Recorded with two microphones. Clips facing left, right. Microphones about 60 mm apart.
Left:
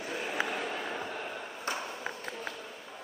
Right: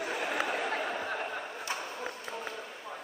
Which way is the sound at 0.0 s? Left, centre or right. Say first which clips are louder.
Right 2 dB; right.